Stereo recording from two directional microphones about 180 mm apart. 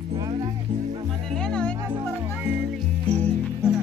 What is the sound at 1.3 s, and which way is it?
Music, 5° left (ahead or behind).